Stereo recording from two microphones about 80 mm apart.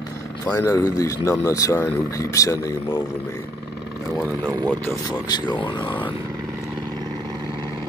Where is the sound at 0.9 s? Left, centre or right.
Left.